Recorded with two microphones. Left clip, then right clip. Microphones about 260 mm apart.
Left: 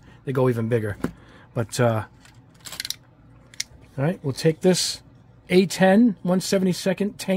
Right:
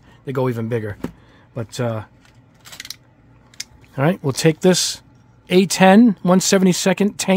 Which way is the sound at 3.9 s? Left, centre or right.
Right.